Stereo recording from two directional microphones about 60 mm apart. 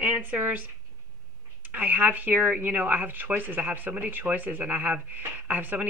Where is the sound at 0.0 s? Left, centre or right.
Right.